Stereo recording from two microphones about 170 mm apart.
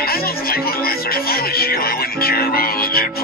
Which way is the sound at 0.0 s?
60° left (ahead or behind).